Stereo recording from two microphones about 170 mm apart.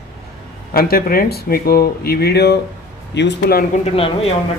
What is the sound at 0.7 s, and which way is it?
Speech, 60° left (ahead or behind).